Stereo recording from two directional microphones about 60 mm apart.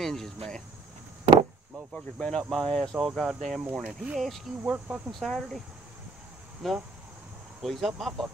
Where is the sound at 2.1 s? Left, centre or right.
Centre.